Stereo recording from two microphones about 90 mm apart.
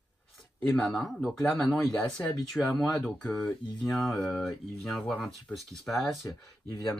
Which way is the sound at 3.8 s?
Centre (ahead or behind).